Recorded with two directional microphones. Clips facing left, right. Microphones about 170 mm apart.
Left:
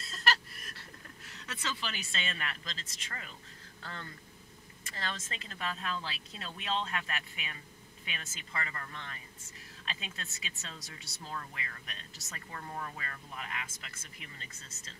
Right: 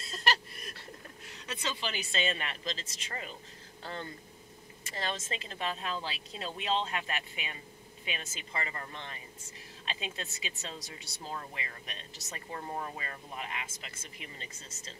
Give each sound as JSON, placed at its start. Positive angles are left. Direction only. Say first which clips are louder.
{"t": 0.1, "sound": "chuckle", "louder": "right 1 dB", "side_deg": -20}
{"t": 1.2, "sound": "speech", "louder": "right 2 dB", "side_deg": -20}